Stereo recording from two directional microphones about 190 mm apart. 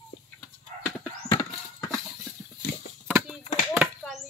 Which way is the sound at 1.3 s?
20° left (ahead or behind).